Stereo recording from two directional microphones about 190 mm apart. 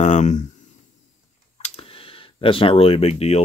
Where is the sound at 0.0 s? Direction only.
40° left (ahead or behind).